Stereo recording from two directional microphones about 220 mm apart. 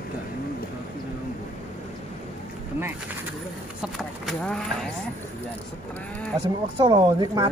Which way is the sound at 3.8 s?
Centre (ahead or behind).